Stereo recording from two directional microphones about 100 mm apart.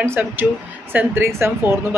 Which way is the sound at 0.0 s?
20° right (ahead or behind).